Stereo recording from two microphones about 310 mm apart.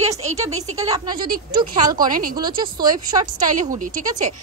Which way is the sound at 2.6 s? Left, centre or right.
Centre.